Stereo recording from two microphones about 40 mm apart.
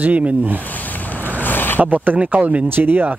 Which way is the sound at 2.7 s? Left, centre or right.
Right.